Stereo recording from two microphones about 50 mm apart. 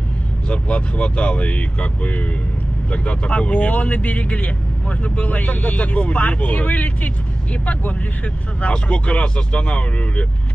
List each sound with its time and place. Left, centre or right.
0.5 s speech: left
8.5 s speech: left